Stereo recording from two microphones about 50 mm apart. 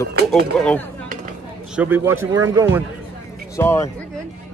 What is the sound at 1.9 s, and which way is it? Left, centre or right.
Speech, right.